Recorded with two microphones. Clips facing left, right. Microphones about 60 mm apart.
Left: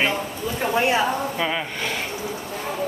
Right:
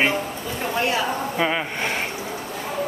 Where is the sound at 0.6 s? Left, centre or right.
Centre.